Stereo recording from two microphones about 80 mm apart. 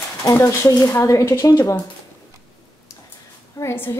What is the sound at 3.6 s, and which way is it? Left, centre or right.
Speech, left.